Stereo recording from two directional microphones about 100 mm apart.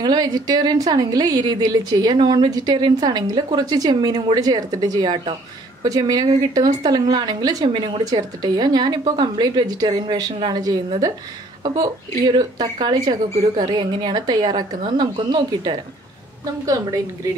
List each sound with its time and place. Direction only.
0.0 s a woman's voice: 40° right (ahead or behind)
16.6 s a woman's voice: 35° right (ahead or behind)